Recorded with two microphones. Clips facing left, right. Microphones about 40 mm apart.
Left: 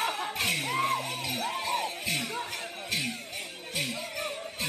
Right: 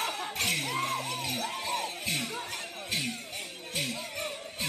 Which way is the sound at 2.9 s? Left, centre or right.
Centre.